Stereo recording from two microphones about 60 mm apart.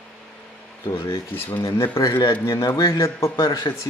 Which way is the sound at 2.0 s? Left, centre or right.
Left.